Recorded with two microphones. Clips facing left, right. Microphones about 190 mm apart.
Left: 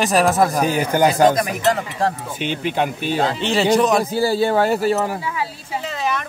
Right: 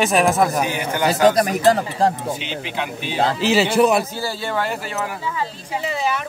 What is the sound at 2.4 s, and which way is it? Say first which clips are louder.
Speech: left 6 dB; 50° left (ahead or behind).